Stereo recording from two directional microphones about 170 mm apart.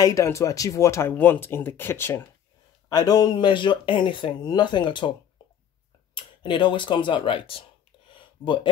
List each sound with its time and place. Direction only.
0.0 s speech: 20° left (ahead or behind)
6.1 s speech: 25° left (ahead or behind)
8.1 s a sound: 30° left (ahead or behind)